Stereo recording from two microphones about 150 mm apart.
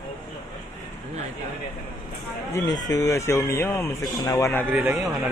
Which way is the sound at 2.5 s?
20° left (ahead or behind).